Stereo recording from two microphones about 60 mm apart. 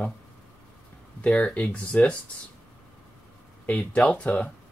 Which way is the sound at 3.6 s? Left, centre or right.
Left.